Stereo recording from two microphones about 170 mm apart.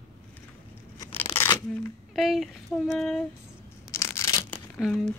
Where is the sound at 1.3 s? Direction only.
15° left (ahead or behind).